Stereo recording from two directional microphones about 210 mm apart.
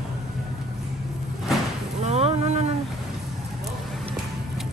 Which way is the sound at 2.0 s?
30° right (ahead or behind).